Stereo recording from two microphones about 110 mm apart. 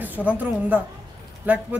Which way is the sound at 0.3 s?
15° right (ahead or behind).